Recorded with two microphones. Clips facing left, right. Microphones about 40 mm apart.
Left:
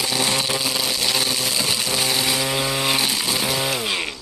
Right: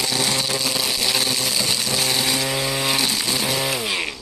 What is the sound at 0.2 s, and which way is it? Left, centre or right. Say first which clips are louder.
Chainsaw: left 1 dB; centre.